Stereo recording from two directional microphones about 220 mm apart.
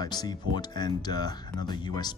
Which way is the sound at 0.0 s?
20° left (ahead or behind).